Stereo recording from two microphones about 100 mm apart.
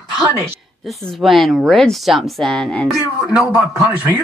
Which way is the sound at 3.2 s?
10° right (ahead or behind).